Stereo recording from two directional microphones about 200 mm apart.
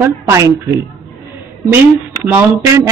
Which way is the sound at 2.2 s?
15° right (ahead or behind).